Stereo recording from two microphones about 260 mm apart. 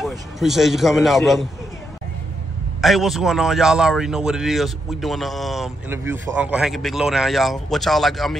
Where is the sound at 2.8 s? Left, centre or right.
Centre.